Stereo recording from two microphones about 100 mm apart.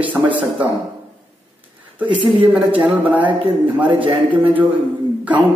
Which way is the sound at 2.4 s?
15° right (ahead or behind).